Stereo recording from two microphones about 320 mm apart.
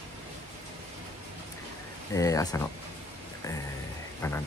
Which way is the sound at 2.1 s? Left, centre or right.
Centre.